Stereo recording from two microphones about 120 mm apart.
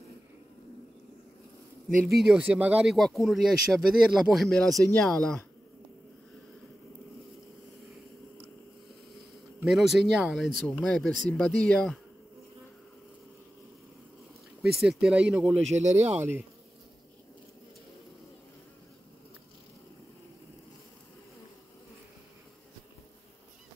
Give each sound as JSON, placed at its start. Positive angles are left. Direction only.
{"t": 2.1, "sound": "speech", "side_deg": -10}
{"t": 9.7, "sound": "speech", "side_deg": 0}
{"t": 14.8, "sound": "speech", "side_deg": -5}
{"t": 15.6, "sound": "speech", "side_deg": -70}
{"t": 16.0, "sound": "speech", "side_deg": -15}